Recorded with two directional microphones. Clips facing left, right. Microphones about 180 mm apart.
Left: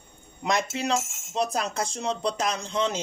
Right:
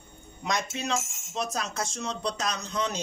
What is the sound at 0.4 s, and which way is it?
Speech, 30° left (ahead or behind).